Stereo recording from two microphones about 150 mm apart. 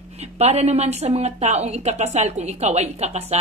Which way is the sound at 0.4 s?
45° right (ahead or behind).